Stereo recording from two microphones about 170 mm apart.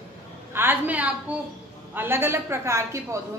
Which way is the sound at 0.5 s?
10° right (ahead or behind).